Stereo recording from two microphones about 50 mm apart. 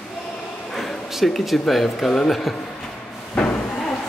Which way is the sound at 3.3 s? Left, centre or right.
Left.